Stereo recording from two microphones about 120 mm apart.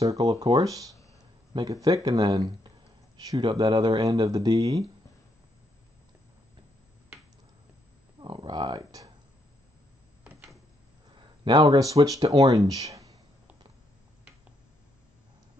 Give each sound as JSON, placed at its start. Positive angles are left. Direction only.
{"t": 0.0, "sound": "speech", "side_deg": -30}
{"t": 8.2, "sound": "speech", "side_deg": -40}
{"t": 11.7, "sound": "speech", "side_deg": -30}